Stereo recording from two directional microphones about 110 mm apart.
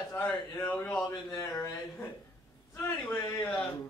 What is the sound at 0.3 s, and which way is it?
Speech, 15° left (ahead or behind).